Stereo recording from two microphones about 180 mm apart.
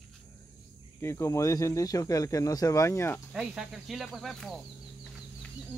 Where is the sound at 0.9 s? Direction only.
15° left (ahead or behind).